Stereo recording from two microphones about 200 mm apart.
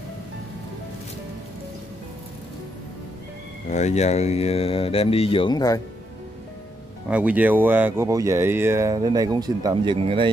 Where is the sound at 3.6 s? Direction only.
35° left (ahead or behind); by 5.8 s 20° left (ahead or behind).